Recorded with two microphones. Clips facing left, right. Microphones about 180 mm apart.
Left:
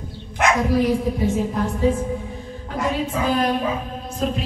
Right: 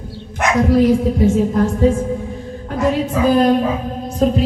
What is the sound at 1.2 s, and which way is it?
Speech, 45° right (ahead or behind).